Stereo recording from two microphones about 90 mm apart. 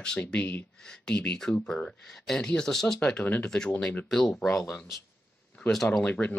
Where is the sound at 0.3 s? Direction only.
20° left (ahead or behind).